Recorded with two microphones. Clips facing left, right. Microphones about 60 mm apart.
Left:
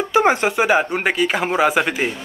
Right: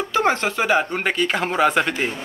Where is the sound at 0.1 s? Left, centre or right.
Centre.